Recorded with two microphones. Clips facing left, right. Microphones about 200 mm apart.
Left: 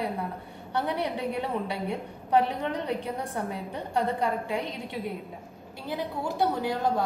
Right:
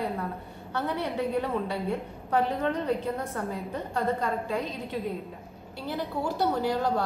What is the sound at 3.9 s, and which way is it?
Speech, 15° left (ahead or behind).